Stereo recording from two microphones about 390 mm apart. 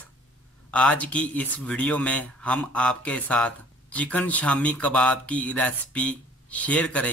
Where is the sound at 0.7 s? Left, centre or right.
Centre.